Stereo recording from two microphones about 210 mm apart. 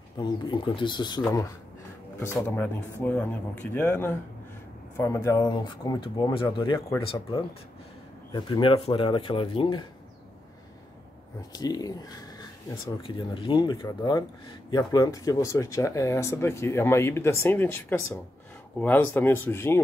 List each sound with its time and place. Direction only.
0.2 s speech: 20° left (ahead or behind)
2.1 s speech: 10° left (ahead or behind)
11.5 s speech: 20° left (ahead or behind)